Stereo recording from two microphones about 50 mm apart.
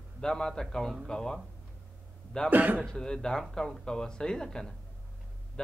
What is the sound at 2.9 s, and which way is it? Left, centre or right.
Speech, centre.